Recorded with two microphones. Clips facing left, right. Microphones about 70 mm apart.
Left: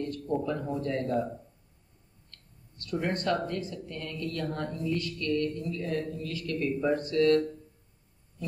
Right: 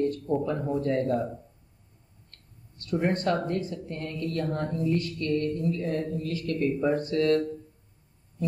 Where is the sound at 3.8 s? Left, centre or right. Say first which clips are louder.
Right 3 dB; right.